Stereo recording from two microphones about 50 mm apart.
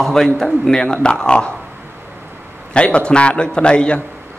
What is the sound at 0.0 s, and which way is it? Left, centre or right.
A man's voice, centre.